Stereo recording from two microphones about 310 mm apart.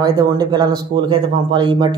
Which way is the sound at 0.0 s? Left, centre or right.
Centre.